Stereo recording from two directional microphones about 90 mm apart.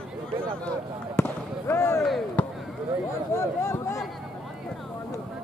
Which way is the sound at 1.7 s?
35° left (ahead or behind).